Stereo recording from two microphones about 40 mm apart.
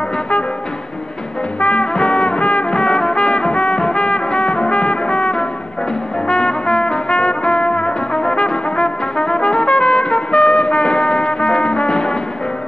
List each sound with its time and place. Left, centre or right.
1.6 s music: left
2.7 s music: centre
6.2 s brass instrument: centre